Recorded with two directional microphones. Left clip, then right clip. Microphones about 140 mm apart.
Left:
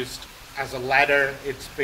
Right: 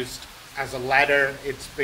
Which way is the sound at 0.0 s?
Centre (ahead or behind).